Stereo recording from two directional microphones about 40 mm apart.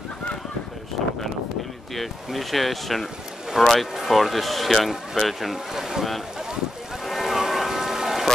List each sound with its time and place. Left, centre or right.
2.0 s speech: centre
3.6 s speech: centre
3.9 s speech: centre
7.1 s boat: centre